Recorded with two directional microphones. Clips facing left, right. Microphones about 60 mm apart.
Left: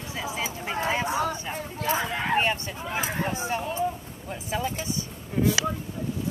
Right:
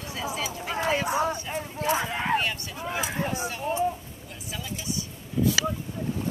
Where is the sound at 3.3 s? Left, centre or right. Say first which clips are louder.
Left 2 dB; left.